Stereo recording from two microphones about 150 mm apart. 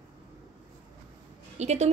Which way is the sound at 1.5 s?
45° right (ahead or behind).